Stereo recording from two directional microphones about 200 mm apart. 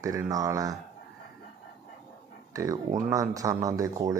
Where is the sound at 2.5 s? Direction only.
15° right (ahead or behind).